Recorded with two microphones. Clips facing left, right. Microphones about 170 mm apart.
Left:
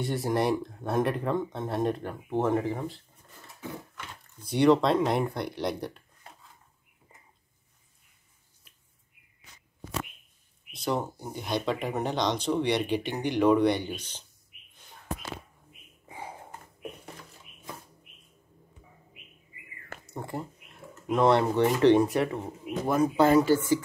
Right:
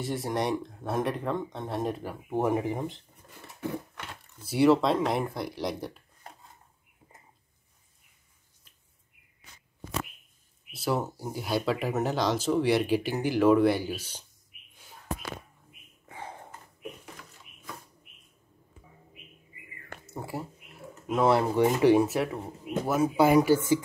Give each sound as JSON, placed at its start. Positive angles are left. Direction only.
{"t": 0.0, "sound": "speech", "side_deg": 0}
{"t": 3.6, "sound": "a sound", "side_deg": -65}
{"t": 4.4, "sound": "speech", "side_deg": -5}
{"t": 10.7, "sound": "speech", "side_deg": -5}
{"t": 16.1, "sound": "a sound", "side_deg": 10}
{"t": 20.1, "sound": "speech", "side_deg": -5}